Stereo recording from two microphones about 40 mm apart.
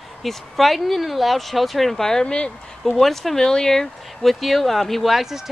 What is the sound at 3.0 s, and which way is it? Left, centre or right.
Speech, centre.